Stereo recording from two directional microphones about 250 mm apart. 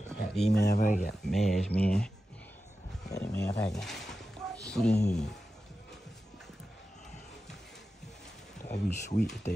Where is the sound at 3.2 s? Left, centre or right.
Centre.